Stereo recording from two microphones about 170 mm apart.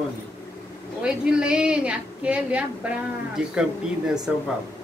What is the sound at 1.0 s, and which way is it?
A woman's voice, 5° right (ahead or behind).